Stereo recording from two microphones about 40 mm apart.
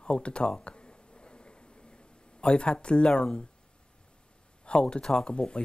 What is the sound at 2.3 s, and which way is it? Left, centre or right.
Speech, left.